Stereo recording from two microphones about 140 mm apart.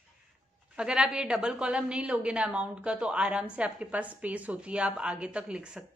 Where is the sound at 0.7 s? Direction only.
5° right (ahead or behind).